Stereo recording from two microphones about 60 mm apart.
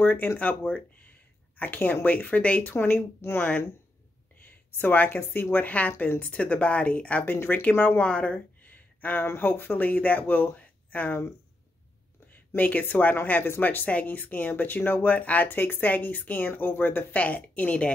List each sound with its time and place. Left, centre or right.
0.0 s speech: left
2.7 s speech: left
4.6 s speech: left
8.0 s speech: centre
12.3 s speech: left